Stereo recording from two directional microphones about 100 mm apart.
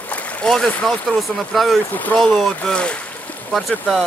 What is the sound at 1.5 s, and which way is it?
Speech, centre (ahead or behind).